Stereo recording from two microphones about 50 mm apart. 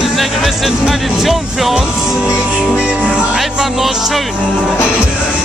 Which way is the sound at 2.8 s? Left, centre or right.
Centre.